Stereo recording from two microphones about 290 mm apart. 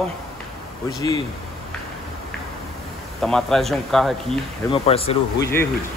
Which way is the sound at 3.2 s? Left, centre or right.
Centre.